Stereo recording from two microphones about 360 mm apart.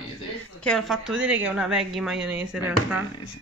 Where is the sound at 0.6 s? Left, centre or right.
Centre.